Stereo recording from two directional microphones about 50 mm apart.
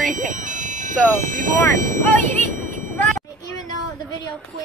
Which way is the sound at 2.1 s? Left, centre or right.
Left.